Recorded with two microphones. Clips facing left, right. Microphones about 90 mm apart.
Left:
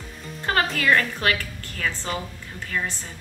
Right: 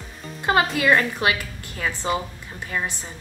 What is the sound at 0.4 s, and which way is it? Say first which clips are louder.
Music: right 3 dB; 15° right (ahead or behind).